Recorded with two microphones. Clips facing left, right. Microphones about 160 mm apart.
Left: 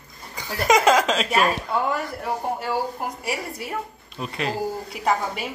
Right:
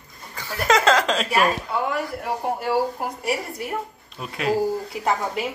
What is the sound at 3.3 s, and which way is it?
Speech, centre (ahead or behind).